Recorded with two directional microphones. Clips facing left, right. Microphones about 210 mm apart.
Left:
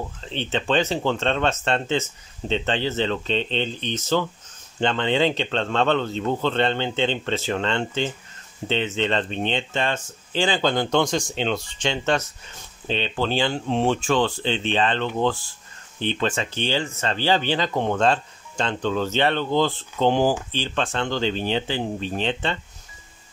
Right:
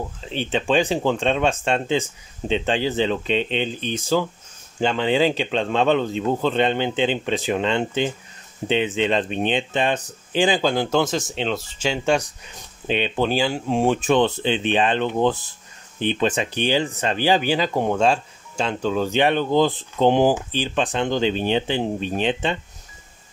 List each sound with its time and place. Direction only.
0.2 s speech: 10° right (ahead or behind)